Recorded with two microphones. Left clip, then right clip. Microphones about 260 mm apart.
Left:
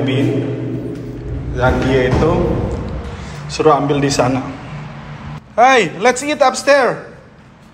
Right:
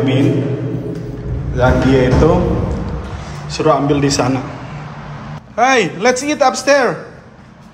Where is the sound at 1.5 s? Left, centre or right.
Centre.